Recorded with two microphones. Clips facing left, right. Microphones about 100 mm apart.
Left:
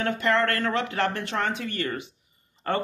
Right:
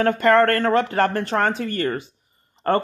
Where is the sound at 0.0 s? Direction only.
50° right (ahead or behind).